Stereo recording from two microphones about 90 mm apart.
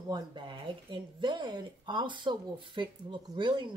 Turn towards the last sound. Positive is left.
turn(degrees=-60)  # may be behind; listen again after turning